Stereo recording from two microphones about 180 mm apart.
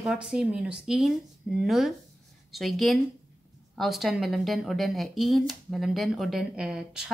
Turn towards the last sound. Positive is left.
turn(degrees=-5)  # may be behind; listen again after turning